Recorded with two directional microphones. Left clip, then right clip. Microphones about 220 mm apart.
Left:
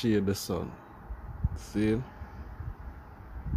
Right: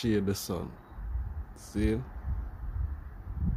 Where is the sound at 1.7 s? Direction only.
Centre (ahead or behind).